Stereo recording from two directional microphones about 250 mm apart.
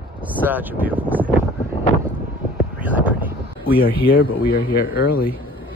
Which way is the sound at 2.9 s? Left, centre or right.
Centre.